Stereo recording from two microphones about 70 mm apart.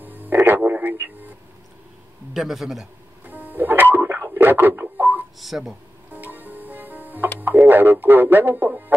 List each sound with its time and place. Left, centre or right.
0.0 s a sound: right
0.6 s radio: right
0.9 s speech: right
2.3 s a man's voice: centre
3.3 s music: right
5.4 s a man's voice: centre
6.1 s music: right
7.6 s speech: right